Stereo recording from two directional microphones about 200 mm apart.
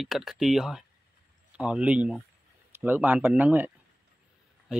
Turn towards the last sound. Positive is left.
turn(degrees=-10)  # may be behind; listen again after turning